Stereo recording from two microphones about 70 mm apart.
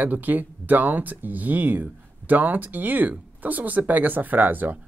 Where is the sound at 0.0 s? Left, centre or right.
Right.